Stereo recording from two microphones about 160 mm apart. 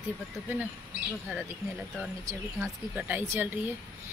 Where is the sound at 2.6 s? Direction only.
10° right (ahead or behind).